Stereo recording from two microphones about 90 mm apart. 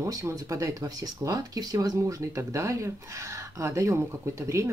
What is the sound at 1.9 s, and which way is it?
Speech, 35° right (ahead or behind).